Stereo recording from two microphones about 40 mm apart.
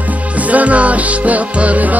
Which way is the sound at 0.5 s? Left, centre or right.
Right.